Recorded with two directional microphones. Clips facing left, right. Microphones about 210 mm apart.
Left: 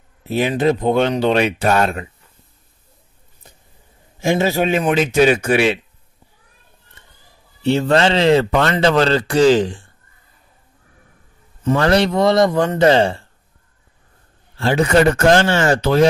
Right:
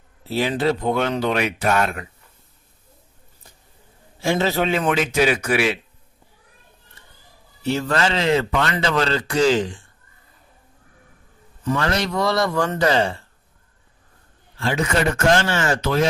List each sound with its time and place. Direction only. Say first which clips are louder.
0.2 s a man's voice: left 4 dB; 15° left (ahead or behind)
4.2 s a man's voice: left 3 dB; 15° left (ahead or behind)
7.6 s a man's voice: left 6 dB; 30° left (ahead or behind)
11.6 s a man's voice: left 7 dB; 35° left (ahead or behind)
14.6 s a man's voice: left 7 dB; 35° left (ahead or behind)